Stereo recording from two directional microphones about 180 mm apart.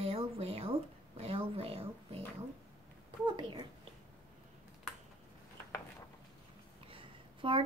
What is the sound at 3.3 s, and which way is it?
Speech, 25° right (ahead or behind).